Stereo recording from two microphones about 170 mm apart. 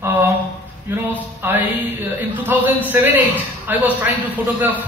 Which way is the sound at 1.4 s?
10° right (ahead or behind).